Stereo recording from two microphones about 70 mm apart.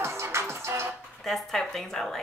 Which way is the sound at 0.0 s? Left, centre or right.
Right.